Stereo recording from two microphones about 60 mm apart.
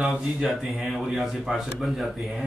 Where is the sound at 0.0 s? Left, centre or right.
Centre.